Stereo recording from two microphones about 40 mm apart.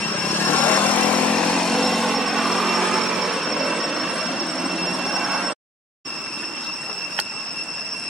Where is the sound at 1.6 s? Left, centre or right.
Centre.